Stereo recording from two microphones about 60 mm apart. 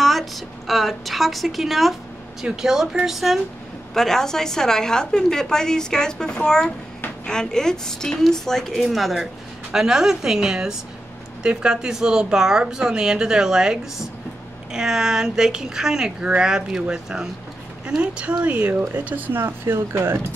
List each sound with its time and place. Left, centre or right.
0.0 s a woman's voice: centre
3.9 s a woman's voice: centre; by 19.4 s right
19.4 s speech: right